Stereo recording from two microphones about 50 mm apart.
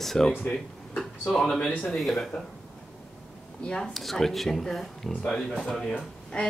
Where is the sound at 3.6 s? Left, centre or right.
Centre.